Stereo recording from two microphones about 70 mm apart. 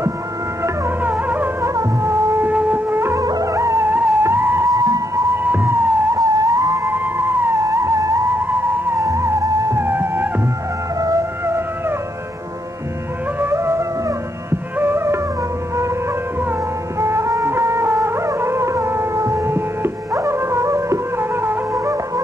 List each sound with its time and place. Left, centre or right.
0.8 s music: right
1.6 s music: right
2.4 s wind instrument: right
3.2 s music: right
3.8 s music: right
4.6 s music: right
5.3 s music: right
6.1 s music: right
6.9 s a sound: right
7.6 s music: right
9.8 s music: right
11.0 s music: right
13.4 s music: right
17.0 s music: right